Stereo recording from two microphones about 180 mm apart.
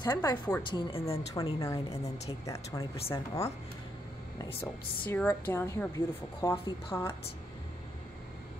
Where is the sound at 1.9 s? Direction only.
35° left (ahead or behind).